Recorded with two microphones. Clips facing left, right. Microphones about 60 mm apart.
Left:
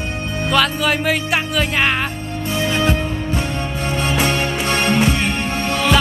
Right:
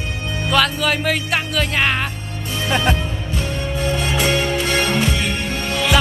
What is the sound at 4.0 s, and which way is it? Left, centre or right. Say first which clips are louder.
Music: left 2 dB; left.